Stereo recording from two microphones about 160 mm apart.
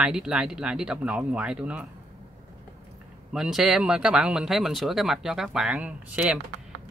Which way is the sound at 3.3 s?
5° right (ahead or behind).